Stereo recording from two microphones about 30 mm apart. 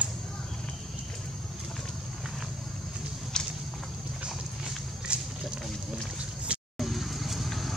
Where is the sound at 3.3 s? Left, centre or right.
Left.